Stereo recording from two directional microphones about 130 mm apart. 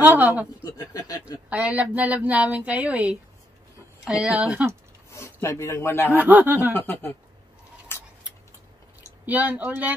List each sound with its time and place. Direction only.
0.0 s a woman's voice: 15° right (ahead or behind)
0.7 s speech: 30° left (ahead or behind)
1.5 s a woman's voice: 10° right (ahead or behind)
5.1 s speech: 20° left (ahead or behind)
6.1 s a woman's voice: 15° right (ahead or behind)
6.7 s speech: 15° left (ahead or behind)
9.2 s a woman's voice: 10° right (ahead or behind)